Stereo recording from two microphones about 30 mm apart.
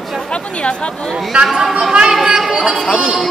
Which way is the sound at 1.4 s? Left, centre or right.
Centre.